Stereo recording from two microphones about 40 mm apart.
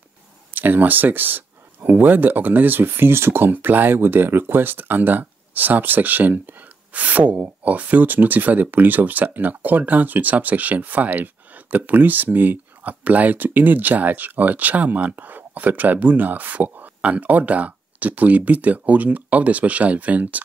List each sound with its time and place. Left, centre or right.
0.6 s speech: right
13.0 s speech: right